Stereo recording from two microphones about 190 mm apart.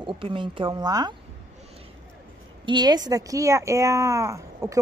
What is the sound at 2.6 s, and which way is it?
Speech, 25° right (ahead or behind).